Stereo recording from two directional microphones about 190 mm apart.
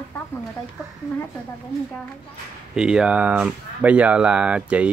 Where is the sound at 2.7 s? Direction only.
5° right (ahead or behind).